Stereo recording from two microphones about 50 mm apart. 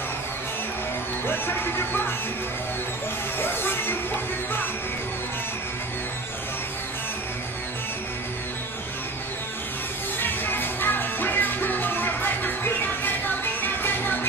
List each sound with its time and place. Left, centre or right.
1.2 s speech: left
3.3 s music: left
10.2 s music: left